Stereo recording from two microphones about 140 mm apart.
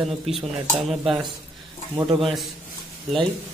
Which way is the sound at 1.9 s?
35° right (ahead or behind).